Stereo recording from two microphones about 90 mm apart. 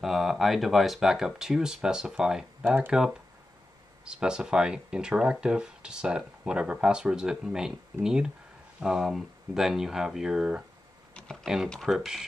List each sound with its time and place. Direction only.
0.0 s speech: centre (ahead or behind)
2.6 s speech: 20° right (ahead or behind)
2.9 s speech: 5° right (ahead or behind)